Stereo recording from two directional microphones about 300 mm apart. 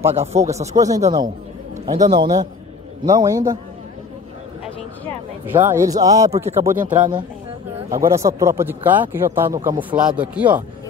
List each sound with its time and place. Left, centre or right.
0.1 s speech: right
5.5 s speech: centre